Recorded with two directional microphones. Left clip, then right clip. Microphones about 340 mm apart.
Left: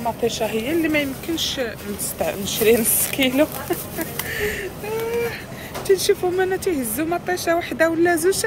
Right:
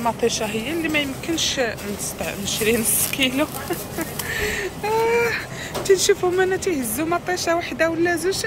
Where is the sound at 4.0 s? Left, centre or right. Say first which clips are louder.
Right 2 dB; centre.